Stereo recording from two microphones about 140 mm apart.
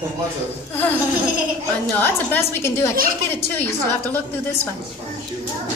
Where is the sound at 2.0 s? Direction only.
15° left (ahead or behind).